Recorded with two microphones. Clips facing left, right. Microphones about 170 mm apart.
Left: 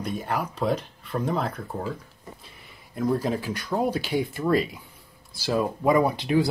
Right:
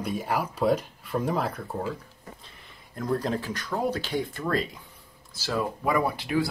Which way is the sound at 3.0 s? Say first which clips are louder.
Left 3 dB; 10° left (ahead or behind).